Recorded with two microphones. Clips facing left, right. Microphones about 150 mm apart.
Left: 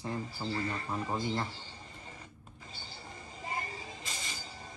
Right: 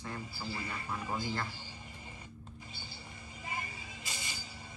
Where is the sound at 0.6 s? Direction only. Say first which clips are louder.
Left 6 dB; 40° left (ahead or behind).